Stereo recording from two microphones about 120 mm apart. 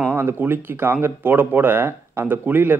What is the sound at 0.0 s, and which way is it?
Speech, 20° right (ahead or behind).